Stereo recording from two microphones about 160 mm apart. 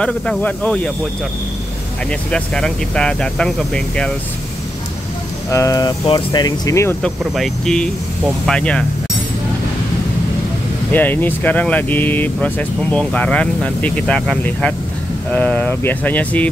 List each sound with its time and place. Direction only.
0.0 s speech: 5° left (ahead or behind)
2.0 s speech: 5° left (ahead or behind)
5.5 s speech: 20° left (ahead or behind)
7.0 s speech: centre (ahead or behind)
10.9 s speech: 10° left (ahead or behind)